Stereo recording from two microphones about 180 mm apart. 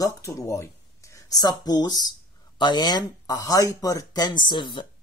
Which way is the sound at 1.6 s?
20° left (ahead or behind).